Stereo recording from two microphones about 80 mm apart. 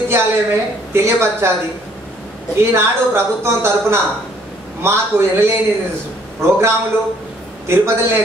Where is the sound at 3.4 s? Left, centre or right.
Right.